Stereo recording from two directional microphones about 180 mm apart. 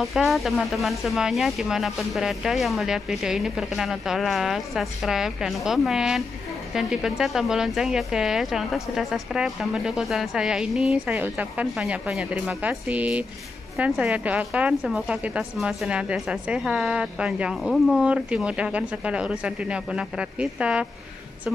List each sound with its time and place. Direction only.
0.0 s a woman's voice: centre (ahead or behind)